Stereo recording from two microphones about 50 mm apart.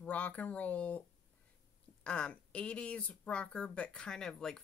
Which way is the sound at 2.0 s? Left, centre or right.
Left.